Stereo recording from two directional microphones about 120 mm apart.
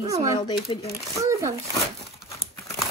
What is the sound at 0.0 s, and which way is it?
Speech, 30° right (ahead or behind).